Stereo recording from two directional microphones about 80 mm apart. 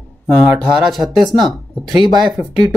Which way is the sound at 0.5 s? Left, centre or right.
Centre.